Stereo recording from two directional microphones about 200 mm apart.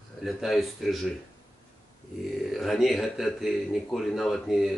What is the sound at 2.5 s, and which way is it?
Speech, centre (ahead or behind).